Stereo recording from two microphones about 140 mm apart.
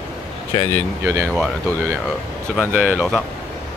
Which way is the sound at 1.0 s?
20° right (ahead or behind).